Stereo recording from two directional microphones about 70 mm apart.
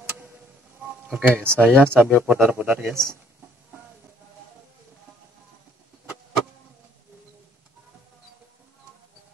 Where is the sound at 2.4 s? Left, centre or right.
Right.